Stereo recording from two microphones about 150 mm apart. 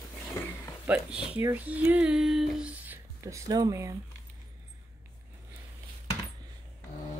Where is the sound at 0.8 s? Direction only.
10° right (ahead or behind).